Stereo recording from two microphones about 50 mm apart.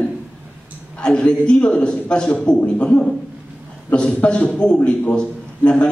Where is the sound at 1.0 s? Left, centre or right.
Centre.